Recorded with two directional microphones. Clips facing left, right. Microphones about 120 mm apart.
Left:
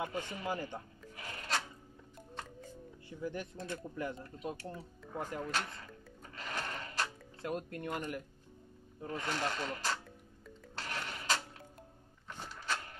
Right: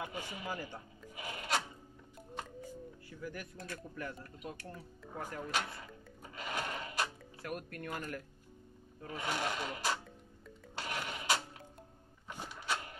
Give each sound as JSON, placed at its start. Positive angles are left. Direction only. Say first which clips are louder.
{"t": 0.1, "sound": "speech", "louder": "left 3 dB", "side_deg": -10}
{"t": 0.5, "sound": "speech", "louder": "left 4 dB", "side_deg": 20}
{"t": 1.0, "sound": "music", "louder": "right 2 dB", "side_deg": -10}
{"t": 3.1, "sound": "speech", "louder": "left 6 dB", "side_deg": 25}
{"t": 5.4, "sound": "speech", "louder": "even", "side_deg": -10}
{"t": 7.4, "sound": "speech", "louder": "left 4 dB", "side_deg": 25}
{"t": 9.0, "sound": "speech", "louder": "left 1 dB", "side_deg": -10}
{"t": 10.8, "sound": "rub", "louder": "right 2 dB", "side_deg": -10}
{"t": 12.3, "sound": "a sound", "louder": "right 1 dB", "side_deg": -10}